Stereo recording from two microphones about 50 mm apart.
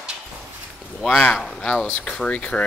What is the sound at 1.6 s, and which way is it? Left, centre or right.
Speech, left.